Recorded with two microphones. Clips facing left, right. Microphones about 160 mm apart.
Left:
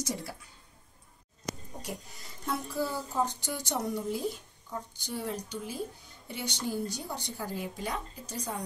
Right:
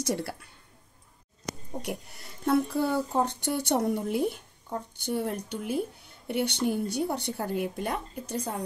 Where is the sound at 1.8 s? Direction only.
65° right (ahead or behind).